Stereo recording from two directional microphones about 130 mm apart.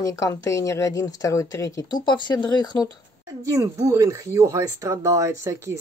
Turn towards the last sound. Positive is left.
turn(degrees=-20)  # may be behind; listen again after turning